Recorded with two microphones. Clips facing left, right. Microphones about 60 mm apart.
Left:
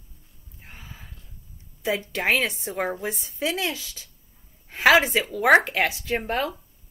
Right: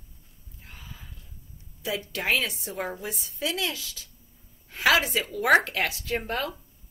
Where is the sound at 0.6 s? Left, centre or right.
Left.